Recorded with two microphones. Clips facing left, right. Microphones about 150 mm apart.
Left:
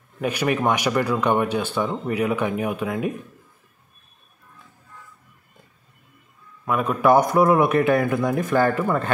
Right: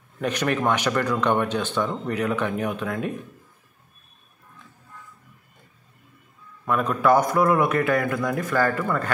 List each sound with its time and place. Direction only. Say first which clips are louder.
0.2 s speech: left 2 dB; 10° left (ahead or behind)
6.6 s a man's voice: left 1 dB; 5° left (ahead or behind)
7.0 s speech: left 3 dB; 20° left (ahead or behind)